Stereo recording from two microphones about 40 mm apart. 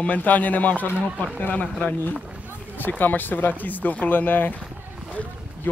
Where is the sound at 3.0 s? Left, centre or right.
Left.